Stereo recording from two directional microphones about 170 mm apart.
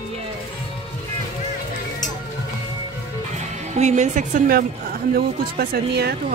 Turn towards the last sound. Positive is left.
turn(degrees=-70)  # may be behind; listen again after turning